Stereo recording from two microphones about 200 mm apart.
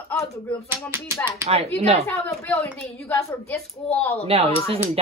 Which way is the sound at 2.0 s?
10° left (ahead or behind).